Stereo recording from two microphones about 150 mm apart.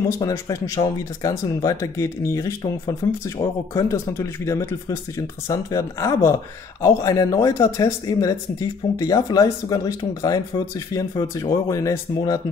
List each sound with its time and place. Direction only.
0.2 s speech: 20° left (ahead or behind)